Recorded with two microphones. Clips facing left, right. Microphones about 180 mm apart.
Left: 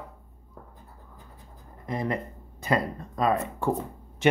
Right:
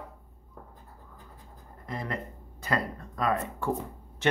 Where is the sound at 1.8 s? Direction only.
20° left (ahead or behind).